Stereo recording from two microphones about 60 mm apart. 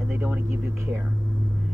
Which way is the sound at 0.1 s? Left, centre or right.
Right.